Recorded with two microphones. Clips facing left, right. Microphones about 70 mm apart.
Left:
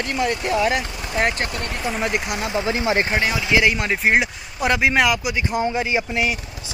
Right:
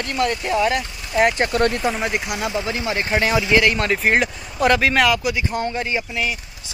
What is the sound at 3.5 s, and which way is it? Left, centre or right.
Speech, centre.